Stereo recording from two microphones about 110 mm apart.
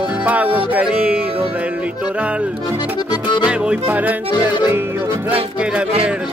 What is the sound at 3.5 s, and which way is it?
Music, 10° right (ahead or behind).